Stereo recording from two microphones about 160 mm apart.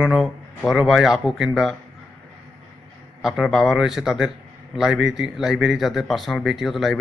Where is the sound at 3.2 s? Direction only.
Centre (ahead or behind).